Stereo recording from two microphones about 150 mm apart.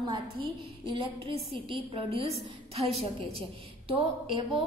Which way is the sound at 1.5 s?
40° right (ahead or behind).